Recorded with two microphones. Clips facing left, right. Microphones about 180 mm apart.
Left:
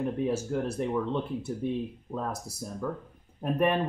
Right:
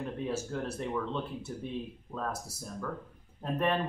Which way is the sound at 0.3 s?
15° left (ahead or behind).